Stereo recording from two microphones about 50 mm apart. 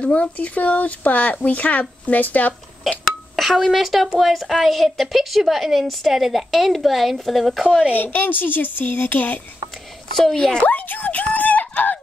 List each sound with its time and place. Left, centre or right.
0.0 s speech: left
3.3 s a woman's voice: centre
7.9 s speech: left
10.3 s speech: centre
10.6 s speech: left